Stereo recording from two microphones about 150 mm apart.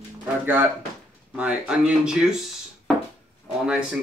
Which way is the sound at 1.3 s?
5° right (ahead or behind).